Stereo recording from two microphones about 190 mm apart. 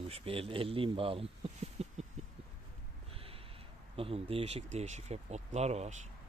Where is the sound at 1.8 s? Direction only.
35° right (ahead or behind).